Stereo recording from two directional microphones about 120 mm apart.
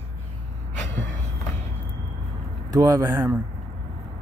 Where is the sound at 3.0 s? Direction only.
15° right (ahead or behind).